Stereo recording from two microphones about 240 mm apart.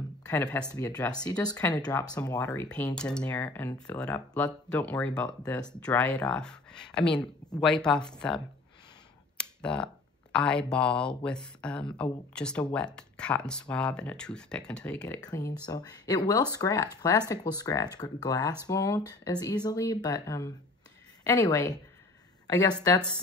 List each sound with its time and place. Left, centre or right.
0.3 s speech: centre
9.4 s a sound: centre
10.3 s a woman's voice: centre